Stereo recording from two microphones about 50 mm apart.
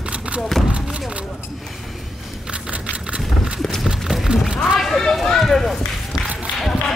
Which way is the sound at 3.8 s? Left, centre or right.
Centre.